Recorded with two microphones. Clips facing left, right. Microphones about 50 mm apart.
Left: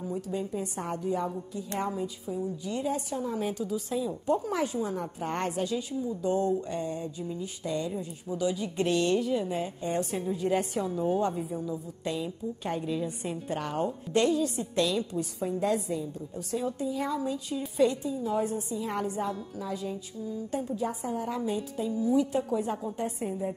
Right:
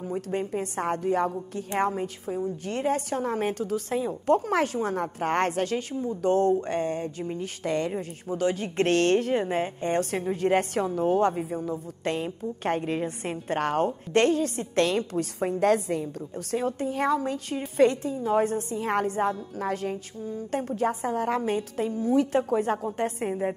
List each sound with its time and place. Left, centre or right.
0.0 s a woman's voice: right